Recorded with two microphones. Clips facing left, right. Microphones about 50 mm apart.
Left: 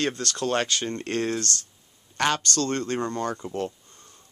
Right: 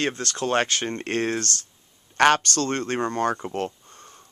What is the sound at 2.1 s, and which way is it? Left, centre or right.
Speech, right.